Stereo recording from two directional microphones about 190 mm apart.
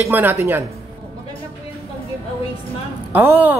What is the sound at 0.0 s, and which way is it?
Speech, 10° right (ahead or behind).